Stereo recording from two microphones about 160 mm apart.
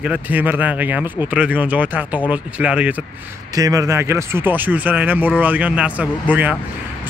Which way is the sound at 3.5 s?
20° right (ahead or behind).